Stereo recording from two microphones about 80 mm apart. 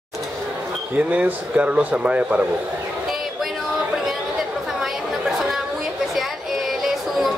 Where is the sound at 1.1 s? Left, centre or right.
Centre.